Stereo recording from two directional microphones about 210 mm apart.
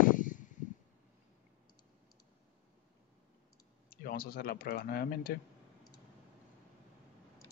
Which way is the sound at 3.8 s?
45° left (ahead or behind).